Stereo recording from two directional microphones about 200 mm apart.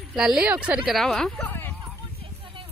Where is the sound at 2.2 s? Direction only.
25° right (ahead or behind).